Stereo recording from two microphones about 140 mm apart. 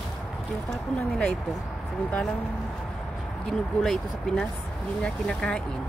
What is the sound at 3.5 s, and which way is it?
Speech, 5° left (ahead or behind).